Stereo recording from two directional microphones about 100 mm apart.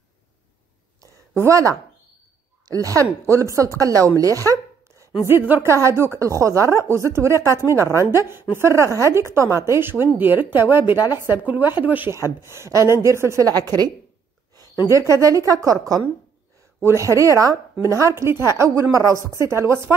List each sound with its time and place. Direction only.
1.0 s a sound: 30° right (ahead or behind)
2.6 s speech: 35° right (ahead or behind)
4.2 s a sound: 35° right (ahead or behind)
5.2 s speech: 25° right (ahead or behind)
12.4 s speech: 30° right (ahead or behind)
15.1 s speech: 35° right (ahead or behind)